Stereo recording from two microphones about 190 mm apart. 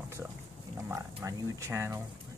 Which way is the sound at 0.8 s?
15° right (ahead or behind).